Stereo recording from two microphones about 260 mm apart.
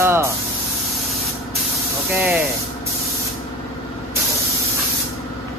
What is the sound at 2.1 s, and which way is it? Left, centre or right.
Speech, centre.